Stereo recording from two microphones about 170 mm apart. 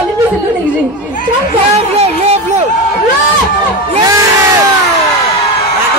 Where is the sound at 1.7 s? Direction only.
40° right (ahead or behind).